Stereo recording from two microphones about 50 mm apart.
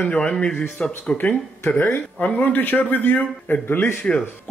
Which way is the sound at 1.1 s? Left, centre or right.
Left.